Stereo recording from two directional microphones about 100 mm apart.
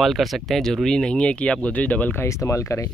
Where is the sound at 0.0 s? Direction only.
Centre (ahead or behind); by 2.2 s 15° left (ahead or behind).